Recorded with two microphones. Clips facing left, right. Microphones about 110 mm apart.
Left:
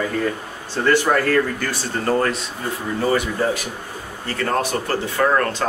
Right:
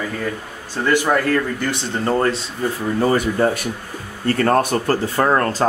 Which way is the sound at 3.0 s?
40° right (ahead or behind).